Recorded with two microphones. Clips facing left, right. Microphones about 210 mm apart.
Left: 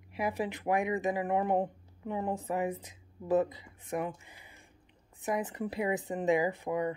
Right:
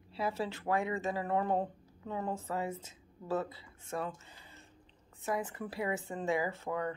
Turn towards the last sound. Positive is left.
turn(degrees=15)  # may be behind; listen again after turning